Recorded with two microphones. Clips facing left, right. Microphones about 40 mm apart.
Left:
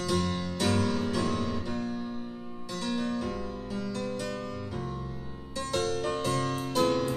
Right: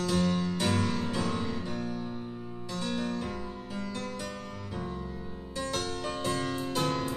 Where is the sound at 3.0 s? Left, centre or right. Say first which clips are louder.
Left 2 dB; right.